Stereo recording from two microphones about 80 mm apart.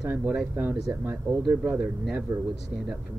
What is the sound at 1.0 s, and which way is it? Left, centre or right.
Speech, right.